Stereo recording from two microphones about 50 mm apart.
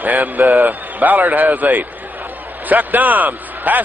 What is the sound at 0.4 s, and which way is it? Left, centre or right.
Speech, right.